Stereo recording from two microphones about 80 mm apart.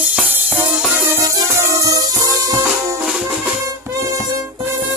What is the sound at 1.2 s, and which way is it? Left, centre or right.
Music, right.